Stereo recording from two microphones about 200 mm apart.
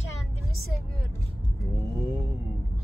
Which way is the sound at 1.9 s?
15° right (ahead or behind).